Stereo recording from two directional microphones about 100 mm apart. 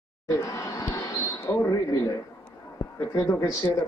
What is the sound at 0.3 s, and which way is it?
A man's voice, 35° left (ahead or behind).